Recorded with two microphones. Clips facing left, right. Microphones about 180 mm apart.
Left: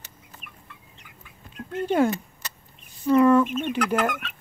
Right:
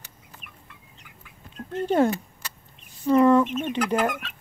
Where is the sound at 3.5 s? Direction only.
5° left (ahead or behind).